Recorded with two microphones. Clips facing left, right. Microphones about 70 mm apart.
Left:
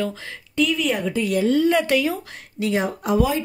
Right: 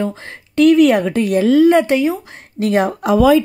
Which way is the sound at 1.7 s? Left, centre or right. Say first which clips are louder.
Right 6 dB; right.